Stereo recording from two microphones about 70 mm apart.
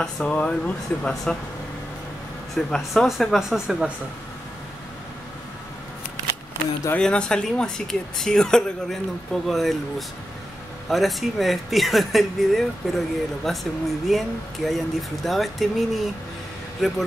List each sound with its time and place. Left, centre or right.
0.0 s speech: centre
2.5 s speech: centre
7.0 s speech: centre